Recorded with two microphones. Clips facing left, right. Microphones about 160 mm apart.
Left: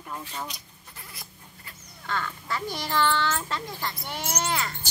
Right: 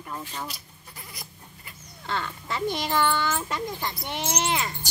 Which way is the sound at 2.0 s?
25° right (ahead or behind).